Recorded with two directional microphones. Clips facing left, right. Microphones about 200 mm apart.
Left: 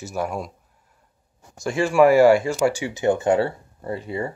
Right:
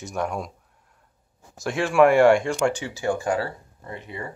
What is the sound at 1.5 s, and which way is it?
Speech, centre (ahead or behind).